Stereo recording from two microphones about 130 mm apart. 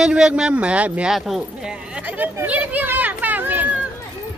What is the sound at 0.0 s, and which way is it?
A man's voice, 5° right (ahead or behind).